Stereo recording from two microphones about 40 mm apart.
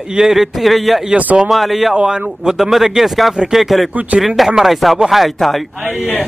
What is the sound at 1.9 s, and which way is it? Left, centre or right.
A man's voice, centre.